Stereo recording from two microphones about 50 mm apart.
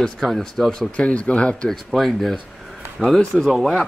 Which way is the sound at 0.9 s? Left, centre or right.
Left.